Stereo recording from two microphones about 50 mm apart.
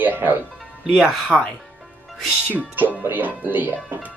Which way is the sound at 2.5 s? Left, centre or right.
Right.